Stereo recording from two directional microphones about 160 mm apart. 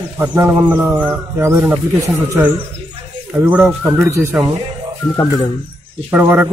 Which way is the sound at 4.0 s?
20° right (ahead or behind).